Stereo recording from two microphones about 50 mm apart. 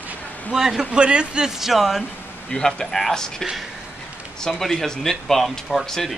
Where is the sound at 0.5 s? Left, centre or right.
Centre.